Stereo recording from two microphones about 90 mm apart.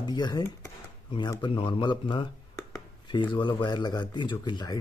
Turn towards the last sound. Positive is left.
turn(degrees=50)  # may be behind; listen again after turning